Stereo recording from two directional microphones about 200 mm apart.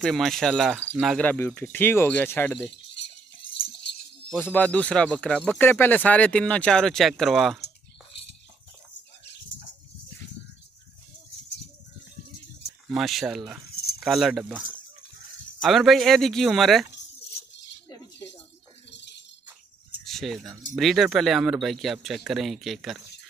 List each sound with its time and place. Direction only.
0.0 s speech: centre (ahead or behind)
0.7 s speech: 10° right (ahead or behind)
1.1 s speech: 10° left (ahead or behind)
3.4 s a sound: 30° left (ahead or behind)
4.5 s speech: 5° left (ahead or behind)
12.9 s speech: centre (ahead or behind)
15.6 s speech: centre (ahead or behind)
18.9 s a sound: 60° left (ahead or behind)
20.1 s speech: centre (ahead or behind)